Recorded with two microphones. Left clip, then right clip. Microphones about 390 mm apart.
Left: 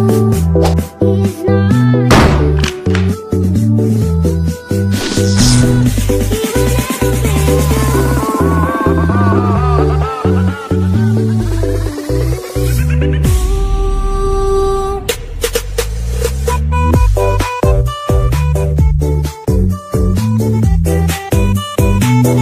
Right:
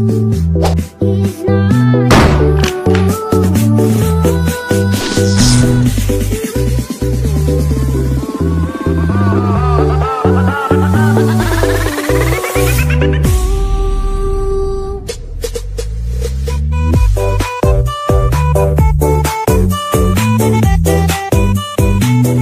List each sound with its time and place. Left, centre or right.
0.7 s music: centre
3.7 s music: right
4.9 s music: centre
8.4 s music: centre
12.9 s music: centre
16.9 s music: centre
20.3 s music: centre